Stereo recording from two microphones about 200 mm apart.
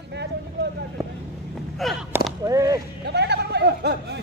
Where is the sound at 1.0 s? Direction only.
15° right (ahead or behind).